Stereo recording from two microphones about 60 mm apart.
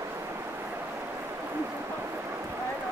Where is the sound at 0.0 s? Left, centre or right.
Right.